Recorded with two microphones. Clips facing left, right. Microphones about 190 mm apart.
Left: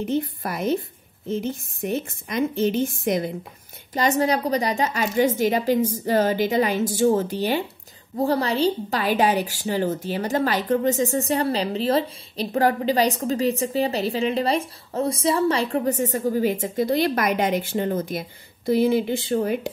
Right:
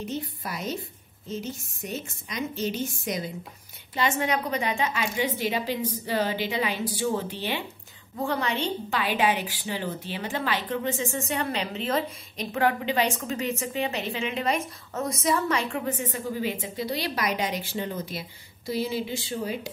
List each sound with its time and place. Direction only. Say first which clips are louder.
0.0 s a woman's voice: left 8 dB; 55° left (ahead or behind)
3.9 s a woman's voice: left 5 dB; 40° left (ahead or behind); by 19.7 s 55° left (ahead or behind)